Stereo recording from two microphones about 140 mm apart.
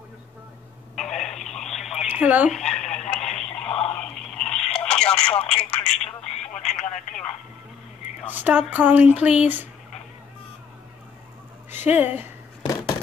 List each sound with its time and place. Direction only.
0.9 s telephone: 5° left (ahead or behind)
2.5 s radio: 5° left (ahead or behind)
3.5 s a sound: 5° left (ahead or behind)
3.9 s telephone: 5° left (ahead or behind)
5.9 s speech: 45° left (ahead or behind)
6.5 s speech: 5° left (ahead or behind)
8.3 s speech: 10° right (ahead or behind)
11.7 s speech: 15° right (ahead or behind)